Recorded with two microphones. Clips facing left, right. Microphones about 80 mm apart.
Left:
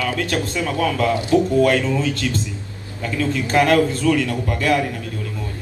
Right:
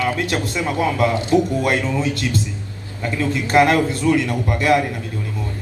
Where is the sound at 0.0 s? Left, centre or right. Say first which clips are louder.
Right 1 dB; right.